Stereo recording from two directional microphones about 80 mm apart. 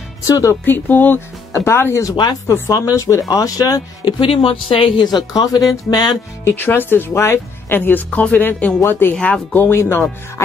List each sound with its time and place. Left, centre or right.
0.3 s speech: left
0.7 s speech: left
4.2 s speech: left
6.4 s speech: left